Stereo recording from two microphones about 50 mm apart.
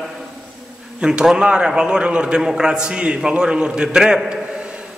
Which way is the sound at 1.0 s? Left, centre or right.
Centre.